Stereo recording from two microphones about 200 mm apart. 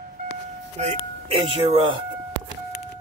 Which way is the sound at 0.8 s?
35° right (ahead or behind).